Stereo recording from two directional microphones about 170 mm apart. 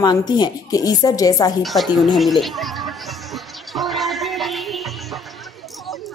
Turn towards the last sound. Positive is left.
turn(degrees=0)  # may be behind; listen again after turning